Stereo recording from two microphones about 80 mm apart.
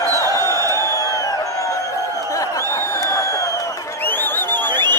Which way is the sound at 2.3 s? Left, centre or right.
Left.